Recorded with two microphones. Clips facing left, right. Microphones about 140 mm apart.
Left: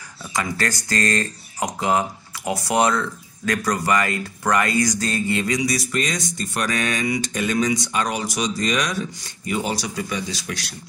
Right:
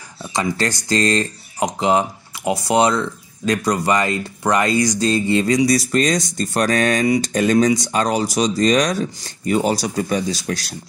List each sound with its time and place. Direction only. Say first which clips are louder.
0.2 s speech: right 4 dB; 25° right (ahead or behind)